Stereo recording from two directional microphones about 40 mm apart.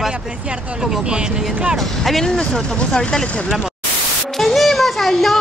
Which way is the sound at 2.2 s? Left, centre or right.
Centre.